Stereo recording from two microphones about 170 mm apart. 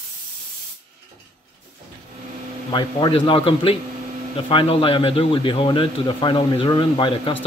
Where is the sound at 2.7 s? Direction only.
25° left (ahead or behind).